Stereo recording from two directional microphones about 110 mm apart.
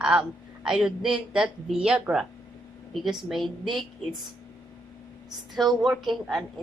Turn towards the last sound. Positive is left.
turn(degrees=0)  # may be behind; listen again after turning